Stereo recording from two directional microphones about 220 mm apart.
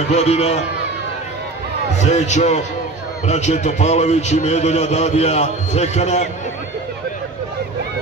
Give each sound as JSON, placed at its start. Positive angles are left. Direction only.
{"t": 0.1, "sound": "a man's voice", "side_deg": 30}
{"t": 2.0, "sound": "a man's voice", "side_deg": 30}